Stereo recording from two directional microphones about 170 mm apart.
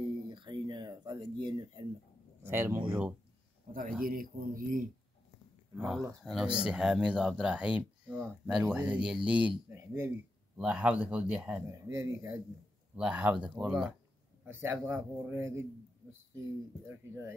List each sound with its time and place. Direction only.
0.0 s a sound: 25° right (ahead or behind)
2.4 s speech: 15° right (ahead or behind)
4.0 s speech: 60° right (ahead or behind)
5.8 s speech: centre (ahead or behind)
11.7 s speech: 15° right (ahead or behind)